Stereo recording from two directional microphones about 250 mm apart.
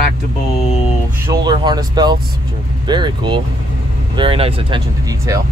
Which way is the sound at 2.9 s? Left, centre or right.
Centre.